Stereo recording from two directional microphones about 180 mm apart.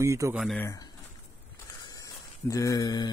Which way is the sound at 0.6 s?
20° left (ahead or behind).